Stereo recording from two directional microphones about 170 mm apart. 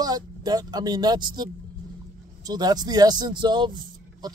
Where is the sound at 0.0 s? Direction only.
25° right (ahead or behind).